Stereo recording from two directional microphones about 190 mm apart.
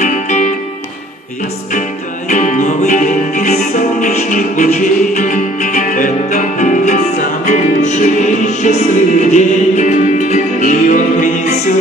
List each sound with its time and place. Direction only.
0.0 s music: 40° left (ahead or behind)
1.7 s music: 40° left (ahead or behind)